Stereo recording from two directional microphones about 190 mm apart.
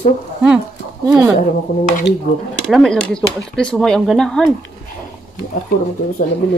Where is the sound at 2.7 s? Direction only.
5° left (ahead or behind).